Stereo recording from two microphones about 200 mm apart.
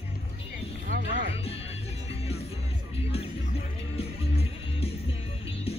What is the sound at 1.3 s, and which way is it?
Music, 30° left (ahead or behind).